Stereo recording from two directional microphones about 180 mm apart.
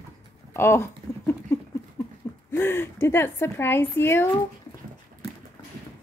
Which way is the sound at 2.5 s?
15° left (ahead or behind).